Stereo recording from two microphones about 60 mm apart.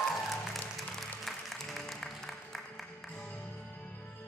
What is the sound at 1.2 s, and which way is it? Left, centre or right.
Music, centre.